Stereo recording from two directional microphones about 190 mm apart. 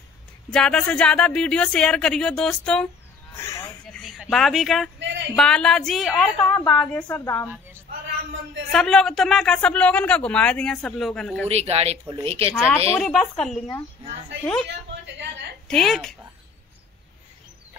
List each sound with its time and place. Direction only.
0.5 s speech: 5° left (ahead or behind)
3.3 s a sound: 15° left (ahead or behind)
3.8 s a sound: centre (ahead or behind)
5.0 s a sound: 65° right (ahead or behind)
5.3 s speech: 5° left (ahead or behind)
8.7 s speech: 5° left (ahead or behind)
11.4 s speech: 35° right (ahead or behind)
12.9 s speech: centre (ahead or behind)
15.7 s speech: centre (ahead or behind)